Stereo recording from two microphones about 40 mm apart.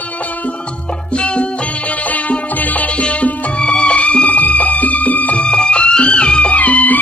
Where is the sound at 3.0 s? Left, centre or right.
Left.